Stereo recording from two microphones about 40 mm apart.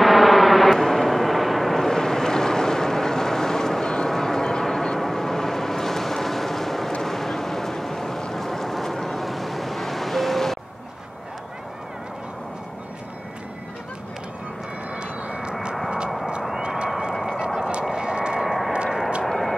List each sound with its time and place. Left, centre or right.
0.0 s vehicle: centre
7.0 s a sound: centre
8.3 s boat: centre
15.0 s vehicle: right
16.6 s vehicle: right
17.1 s a sound: centre
17.6 s vehicle: right
18.4 s vehicle: centre